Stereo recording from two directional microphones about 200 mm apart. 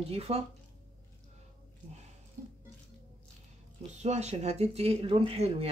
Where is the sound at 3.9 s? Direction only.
35° right (ahead or behind).